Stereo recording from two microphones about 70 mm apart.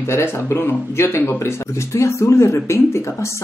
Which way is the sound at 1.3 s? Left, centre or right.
Left.